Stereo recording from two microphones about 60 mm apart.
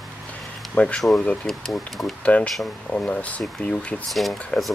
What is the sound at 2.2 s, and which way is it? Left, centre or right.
Speech, centre.